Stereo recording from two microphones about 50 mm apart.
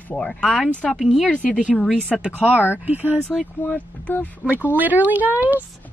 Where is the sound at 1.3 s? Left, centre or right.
Left.